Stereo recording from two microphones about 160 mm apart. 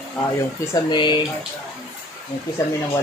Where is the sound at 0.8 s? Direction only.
30° left (ahead or behind).